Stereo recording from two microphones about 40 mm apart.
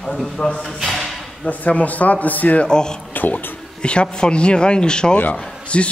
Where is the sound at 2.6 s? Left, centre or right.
Centre.